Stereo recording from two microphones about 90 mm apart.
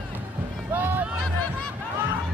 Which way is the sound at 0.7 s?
20° right (ahead or behind).